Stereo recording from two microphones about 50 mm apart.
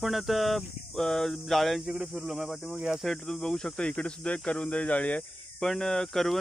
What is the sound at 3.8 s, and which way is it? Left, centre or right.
Speech, left.